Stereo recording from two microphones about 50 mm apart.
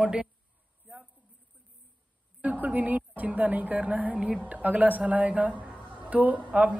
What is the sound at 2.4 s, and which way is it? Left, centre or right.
A man's voice, right.